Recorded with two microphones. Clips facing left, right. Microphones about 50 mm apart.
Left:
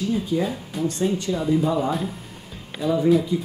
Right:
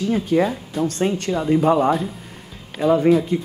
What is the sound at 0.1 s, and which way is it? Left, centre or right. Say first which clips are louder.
Speech: right 7 dB; right.